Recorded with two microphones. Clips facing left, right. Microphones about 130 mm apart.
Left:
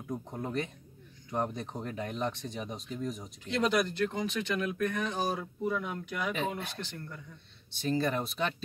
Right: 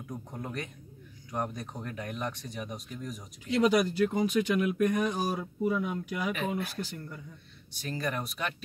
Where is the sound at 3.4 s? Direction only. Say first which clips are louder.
Right 4 dB; 5° right (ahead or behind).